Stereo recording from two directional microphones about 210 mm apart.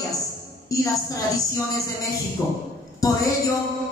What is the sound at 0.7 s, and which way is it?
A woman's voice, 15° left (ahead or behind).